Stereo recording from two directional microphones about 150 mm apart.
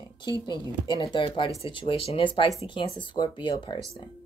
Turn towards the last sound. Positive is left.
turn(degrees=30)  # may be behind; listen again after turning